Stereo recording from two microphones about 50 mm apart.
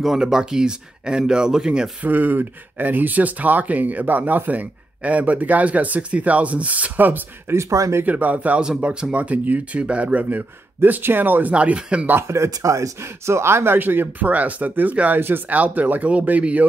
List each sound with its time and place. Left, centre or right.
0.2 s speech: centre
2.0 s speech: right
7.4 s speech: right
8.0 s speech: right
10.9 s speech: right
11.5 s speech: right
12.3 s speech: right
13.7 s speech: right
15.1 s speech: right